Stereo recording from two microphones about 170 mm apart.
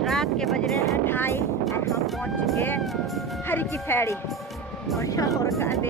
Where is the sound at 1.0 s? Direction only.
15° left (ahead or behind).